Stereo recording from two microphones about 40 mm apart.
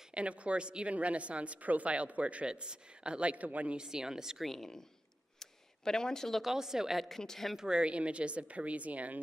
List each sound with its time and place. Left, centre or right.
0.1 s a woman's voice: right
2.4 s speech: right
3.7 s speech: centre
4.5 s speech: centre
5.4 s a sound: centre
6.4 s speech: centre
7.2 s speech: centre
7.5 s a woman's voice: centre; by 9.2 s right